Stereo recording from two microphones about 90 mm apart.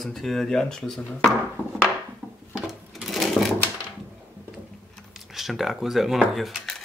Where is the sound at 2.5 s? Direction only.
5° right (ahead or behind).